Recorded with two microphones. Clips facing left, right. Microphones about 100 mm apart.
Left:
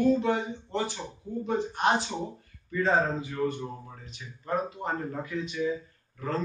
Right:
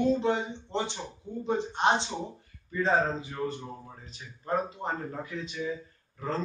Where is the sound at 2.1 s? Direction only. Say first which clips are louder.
Left 2 dB; 10° left (ahead or behind).